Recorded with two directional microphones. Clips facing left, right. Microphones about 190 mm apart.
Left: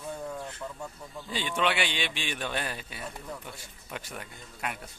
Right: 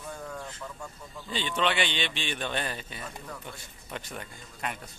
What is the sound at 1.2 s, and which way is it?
A man's voice, 10° left (ahead or behind).